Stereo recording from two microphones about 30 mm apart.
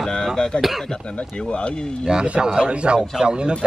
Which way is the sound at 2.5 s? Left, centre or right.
Right.